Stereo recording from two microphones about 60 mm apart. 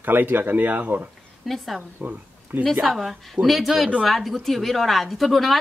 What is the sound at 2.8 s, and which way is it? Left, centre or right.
A woman's voice, centre.